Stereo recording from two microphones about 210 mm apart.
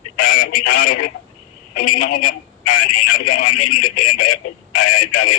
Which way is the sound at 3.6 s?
90° left.